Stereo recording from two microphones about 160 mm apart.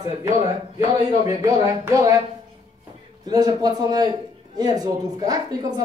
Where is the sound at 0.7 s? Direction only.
20° right (ahead or behind).